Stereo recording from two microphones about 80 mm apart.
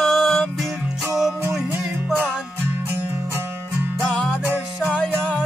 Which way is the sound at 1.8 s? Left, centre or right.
Centre.